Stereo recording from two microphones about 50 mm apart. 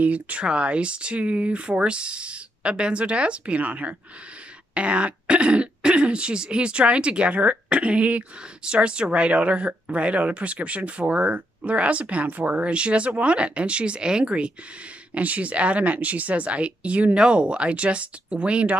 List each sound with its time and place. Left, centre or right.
0.0 s speech: right